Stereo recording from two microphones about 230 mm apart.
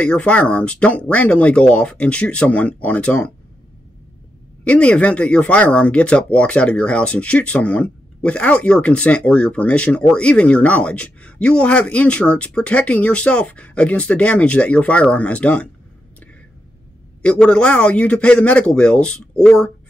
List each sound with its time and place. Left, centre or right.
0.0 s speech: centre
4.6 s speech: centre
17.2 s speech: centre